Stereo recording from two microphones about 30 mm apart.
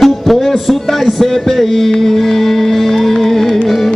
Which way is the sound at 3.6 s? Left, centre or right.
Centre.